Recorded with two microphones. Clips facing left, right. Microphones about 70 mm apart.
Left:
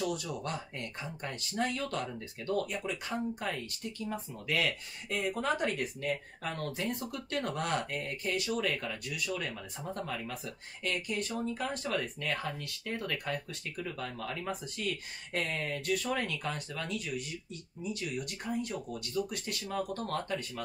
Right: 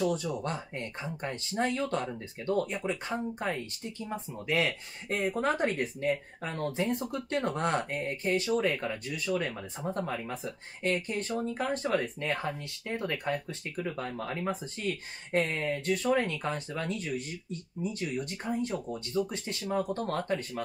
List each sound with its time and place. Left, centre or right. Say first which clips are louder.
0.0 s speech: right 5 dB; right